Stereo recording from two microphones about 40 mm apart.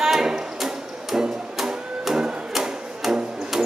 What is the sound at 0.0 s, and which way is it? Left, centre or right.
Music, centre.